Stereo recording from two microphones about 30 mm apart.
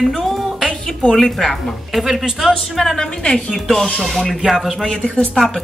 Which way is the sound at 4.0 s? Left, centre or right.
Centre.